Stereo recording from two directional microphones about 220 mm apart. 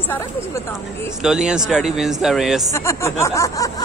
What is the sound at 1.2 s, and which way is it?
Speech, 5° right (ahead or behind).